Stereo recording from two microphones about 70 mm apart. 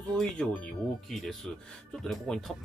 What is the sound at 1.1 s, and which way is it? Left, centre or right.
Speech, centre.